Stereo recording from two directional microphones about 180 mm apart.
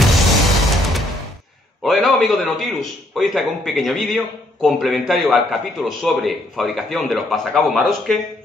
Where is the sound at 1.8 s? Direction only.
Centre (ahead or behind).